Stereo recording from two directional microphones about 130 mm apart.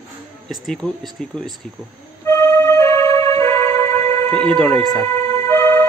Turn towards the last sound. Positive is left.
turn(degrees=20)  # may be behind; listen again after turning